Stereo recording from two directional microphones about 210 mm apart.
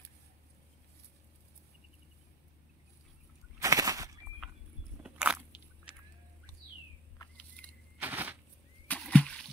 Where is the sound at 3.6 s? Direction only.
15° right (ahead or behind).